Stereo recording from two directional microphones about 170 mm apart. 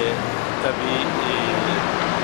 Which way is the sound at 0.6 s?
15° left (ahead or behind).